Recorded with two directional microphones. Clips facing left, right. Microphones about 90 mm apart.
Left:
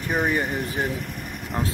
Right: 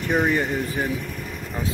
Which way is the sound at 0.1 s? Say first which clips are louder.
Right 2 dB; 10° left (ahead or behind).